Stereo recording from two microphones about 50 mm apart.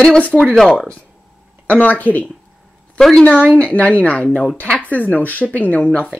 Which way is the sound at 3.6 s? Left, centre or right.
Left.